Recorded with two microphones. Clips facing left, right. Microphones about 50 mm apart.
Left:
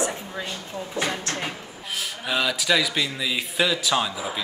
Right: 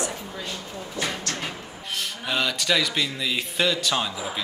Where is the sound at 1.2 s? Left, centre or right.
Left.